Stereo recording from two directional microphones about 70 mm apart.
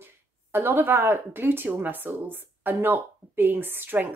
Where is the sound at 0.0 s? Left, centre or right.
Right.